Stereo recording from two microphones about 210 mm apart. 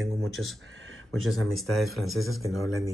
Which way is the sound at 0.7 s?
70° right (ahead or behind).